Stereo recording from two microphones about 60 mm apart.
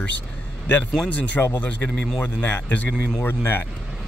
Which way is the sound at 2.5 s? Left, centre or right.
Left.